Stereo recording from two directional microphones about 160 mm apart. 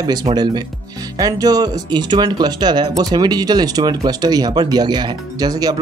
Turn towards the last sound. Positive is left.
turn(degrees=-25)  # may be behind; listen again after turning